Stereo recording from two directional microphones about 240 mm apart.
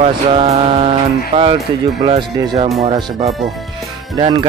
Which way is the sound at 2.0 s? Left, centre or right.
Right.